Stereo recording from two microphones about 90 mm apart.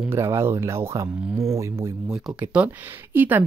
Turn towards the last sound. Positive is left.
turn(degrees=-20)  # may be behind; listen again after turning